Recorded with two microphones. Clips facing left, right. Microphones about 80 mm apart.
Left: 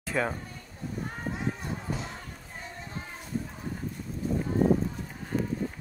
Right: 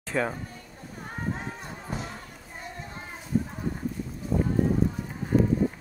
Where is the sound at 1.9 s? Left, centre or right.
Right.